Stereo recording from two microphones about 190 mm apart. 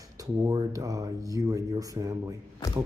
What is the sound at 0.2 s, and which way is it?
A man's voice, 20° right (ahead or behind).